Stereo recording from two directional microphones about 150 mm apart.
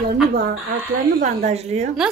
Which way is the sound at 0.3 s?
80° right.